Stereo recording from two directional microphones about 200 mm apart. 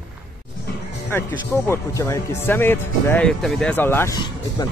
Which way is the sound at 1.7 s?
15° left (ahead or behind).